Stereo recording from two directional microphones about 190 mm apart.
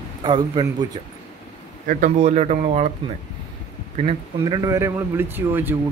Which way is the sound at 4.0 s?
25° right (ahead or behind).